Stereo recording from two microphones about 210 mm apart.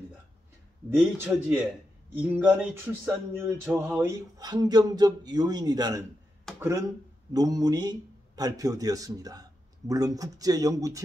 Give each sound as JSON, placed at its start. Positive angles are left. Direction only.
{"t": 0.8, "sound": "speech", "side_deg": -10}